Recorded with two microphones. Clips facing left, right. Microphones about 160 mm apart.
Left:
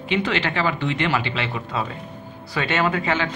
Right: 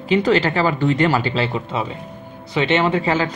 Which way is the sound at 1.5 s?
20° right (ahead or behind).